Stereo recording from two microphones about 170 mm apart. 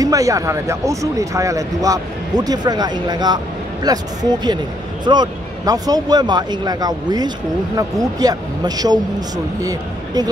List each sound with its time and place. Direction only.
0.0 s speech: 20° right (ahead or behind)